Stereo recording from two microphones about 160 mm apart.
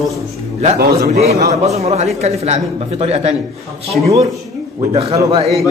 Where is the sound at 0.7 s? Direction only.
75° right (ahead or behind).